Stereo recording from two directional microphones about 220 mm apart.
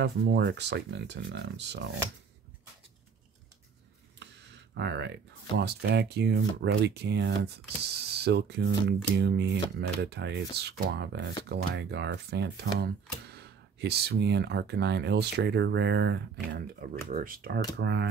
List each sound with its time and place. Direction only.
0.0 s speech: 50° right (ahead or behind)
4.7 s speech: 50° right (ahead or behind)
17.1 s speech: 40° right (ahead or behind)
17.7 s speech: 50° right (ahead or behind)